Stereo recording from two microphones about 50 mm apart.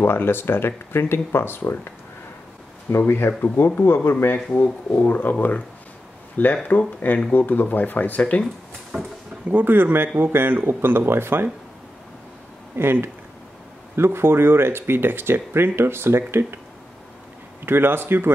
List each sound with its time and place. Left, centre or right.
0.0 s speech: left
3.1 s speech: left
4.5 s speech: left
8.9 s speech: right
9.5 s speech: right
12.7 s speech: right
17.6 s speech: right